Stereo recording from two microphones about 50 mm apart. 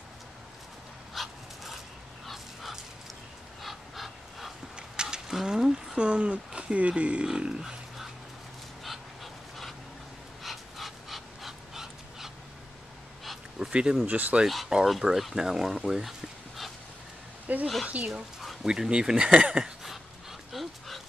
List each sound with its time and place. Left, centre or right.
1.1 s dog: centre
3.6 s a sound: centre
4.7 s mechanisms: centre
5.9 s speech: right
8.8 s dog: centre
13.6 s speech: centre
14.0 s speech: right
14.9 s speech: centre
15.4 s a sound: centre
17.5 s speech: right
18.4 s a sound: centre
18.7 s a sound: centre